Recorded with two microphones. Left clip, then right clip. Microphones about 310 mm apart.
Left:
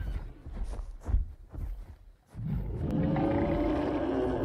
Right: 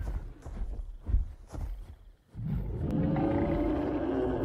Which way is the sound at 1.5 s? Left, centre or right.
Right.